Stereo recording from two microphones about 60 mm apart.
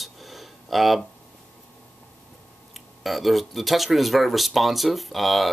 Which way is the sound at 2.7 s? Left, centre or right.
Centre.